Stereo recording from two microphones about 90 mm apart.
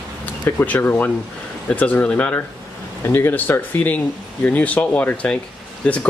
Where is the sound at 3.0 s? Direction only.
25° left (ahead or behind).